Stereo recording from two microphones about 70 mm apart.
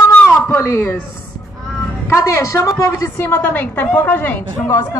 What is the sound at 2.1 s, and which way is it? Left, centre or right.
Speech, left.